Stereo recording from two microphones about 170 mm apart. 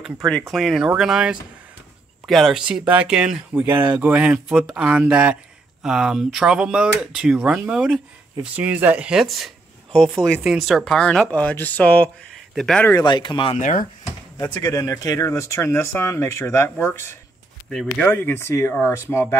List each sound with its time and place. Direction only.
0.0 s speech: centre (ahead or behind)
12.8 s speech: 25° left (ahead or behind)
13.6 s speech: 50° left (ahead or behind)
14.4 s speech: 20° left (ahead or behind)
17.6 s speech: 5° left (ahead or behind)
18.1 s speech: 15° left (ahead or behind)